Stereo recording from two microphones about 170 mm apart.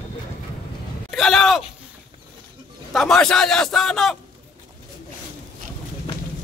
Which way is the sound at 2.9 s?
Centre (ahead or behind).